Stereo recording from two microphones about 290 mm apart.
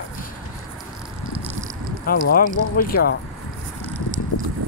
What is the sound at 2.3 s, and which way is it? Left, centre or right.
Speech, left.